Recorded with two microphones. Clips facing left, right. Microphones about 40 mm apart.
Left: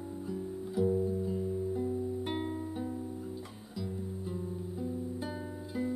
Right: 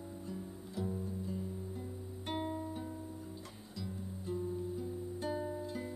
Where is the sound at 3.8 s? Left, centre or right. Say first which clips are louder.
Left 6 dB; centre.